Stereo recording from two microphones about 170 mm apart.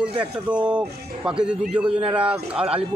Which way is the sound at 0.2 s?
5° right (ahead or behind).